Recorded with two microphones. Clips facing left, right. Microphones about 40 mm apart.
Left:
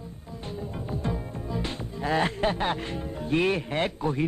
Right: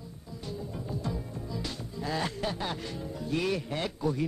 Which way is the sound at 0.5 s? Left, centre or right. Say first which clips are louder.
Left 3 dB; left.